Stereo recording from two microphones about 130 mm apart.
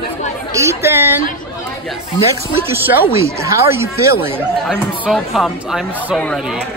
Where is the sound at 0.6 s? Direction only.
20° right (ahead or behind).